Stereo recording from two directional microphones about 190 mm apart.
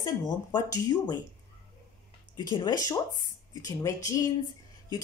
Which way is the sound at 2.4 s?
20° left (ahead or behind).